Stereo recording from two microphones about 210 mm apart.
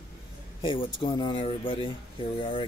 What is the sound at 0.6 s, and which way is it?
Speech, 25° left (ahead or behind).